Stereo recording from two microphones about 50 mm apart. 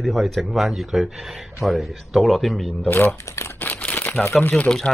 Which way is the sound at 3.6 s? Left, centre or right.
Left.